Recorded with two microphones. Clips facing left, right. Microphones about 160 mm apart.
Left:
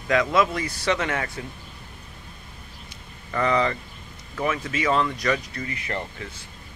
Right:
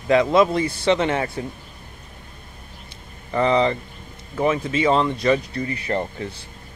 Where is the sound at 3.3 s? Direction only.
25° right (ahead or behind).